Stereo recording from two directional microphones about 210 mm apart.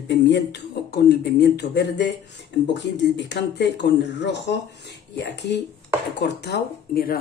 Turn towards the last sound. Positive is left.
turn(degrees=50)  # may be behind; listen again after turning